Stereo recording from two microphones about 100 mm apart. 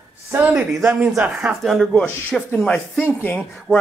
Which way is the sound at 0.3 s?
15° right (ahead or behind).